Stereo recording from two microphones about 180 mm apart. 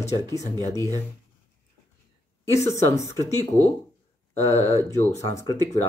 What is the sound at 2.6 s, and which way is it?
Speech, 15° left (ahead or behind).